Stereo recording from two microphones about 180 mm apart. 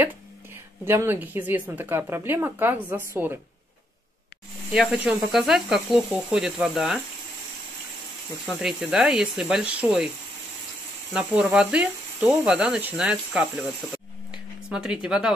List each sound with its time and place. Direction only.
0.8 s speech: 15° right (ahead or behind)
4.7 s speech: 5° right (ahead or behind)
8.5 s speech: centre (ahead or behind)
11.1 s speech: 5° right (ahead or behind)
14.3 s a sound: 5° right (ahead or behind)